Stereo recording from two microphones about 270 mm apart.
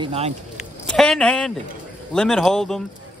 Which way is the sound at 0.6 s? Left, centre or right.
Centre.